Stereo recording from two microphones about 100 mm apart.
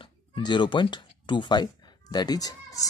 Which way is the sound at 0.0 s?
50° left (ahead or behind).